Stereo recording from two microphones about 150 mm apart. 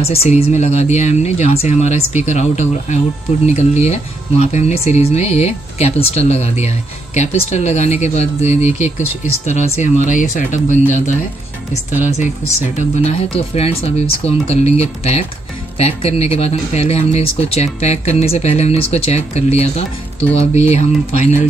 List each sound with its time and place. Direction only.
0.1 s speech: 40° left (ahead or behind)